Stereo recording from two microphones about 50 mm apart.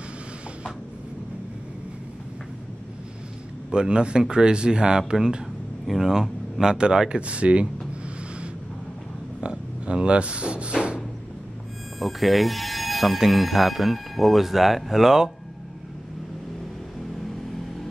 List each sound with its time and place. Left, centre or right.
3.7 s a man's voice: centre
7.2 s a sound: right
12.0 s speech: centre